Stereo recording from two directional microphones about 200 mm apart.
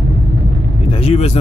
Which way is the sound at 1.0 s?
30° left (ahead or behind).